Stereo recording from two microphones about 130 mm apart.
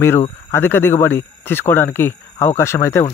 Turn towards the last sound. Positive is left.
turn(degrees=20)  # may be behind; listen again after turning